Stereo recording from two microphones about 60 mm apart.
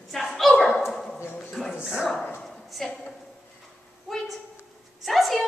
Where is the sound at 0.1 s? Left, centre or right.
Centre.